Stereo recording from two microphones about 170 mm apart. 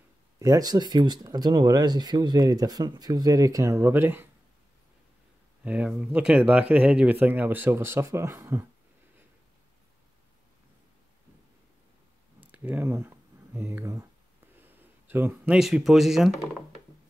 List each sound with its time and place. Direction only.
0.4 s speech: 20° right (ahead or behind)
5.6 s speech: 5° right (ahead or behind)
12.4 s a sound: 10° right (ahead or behind)
14.6 s speech: 10° right (ahead or behind)